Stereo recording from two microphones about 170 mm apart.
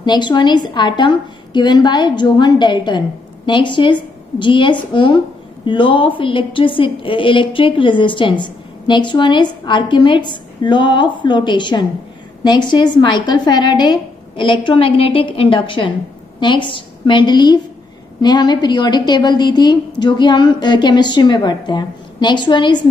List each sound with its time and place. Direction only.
0.0 s a woman's voice: 25° left (ahead or behind)